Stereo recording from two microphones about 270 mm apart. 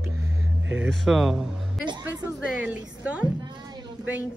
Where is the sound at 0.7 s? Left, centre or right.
Centre.